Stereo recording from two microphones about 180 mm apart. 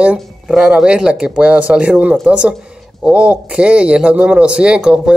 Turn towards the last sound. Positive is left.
turn(degrees=-5)  # may be behind; listen again after turning